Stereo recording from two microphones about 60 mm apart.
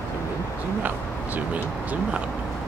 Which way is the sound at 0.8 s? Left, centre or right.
Right.